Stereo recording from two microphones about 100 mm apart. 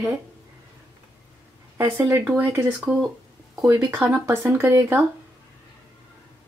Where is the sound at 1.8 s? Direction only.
20° right (ahead or behind).